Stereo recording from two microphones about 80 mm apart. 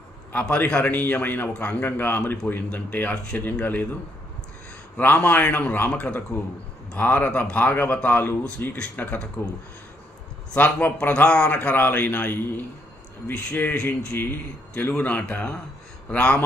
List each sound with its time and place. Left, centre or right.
0.3 s a man's voice: left
4.9 s a man's voice: left
10.5 s a man's voice: left